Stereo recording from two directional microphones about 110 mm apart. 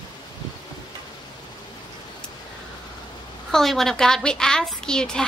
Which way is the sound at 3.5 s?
5° left (ahead or behind).